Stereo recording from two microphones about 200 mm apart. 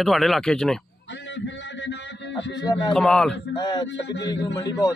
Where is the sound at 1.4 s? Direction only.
65° left (ahead or behind).